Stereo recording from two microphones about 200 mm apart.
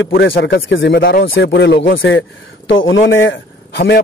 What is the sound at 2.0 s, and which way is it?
Speech, 75° left (ahead or behind).